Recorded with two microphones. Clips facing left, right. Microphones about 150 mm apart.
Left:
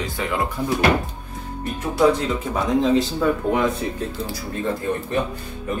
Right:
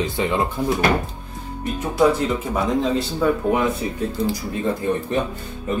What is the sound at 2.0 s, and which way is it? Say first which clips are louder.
Speech: even; 5° right (ahead or behind).